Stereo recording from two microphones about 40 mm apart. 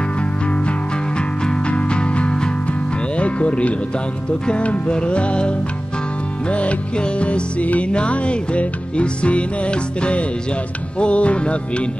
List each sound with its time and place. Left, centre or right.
0.5 s music: left